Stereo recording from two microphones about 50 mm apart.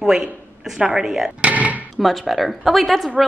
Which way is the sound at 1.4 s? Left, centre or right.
Right.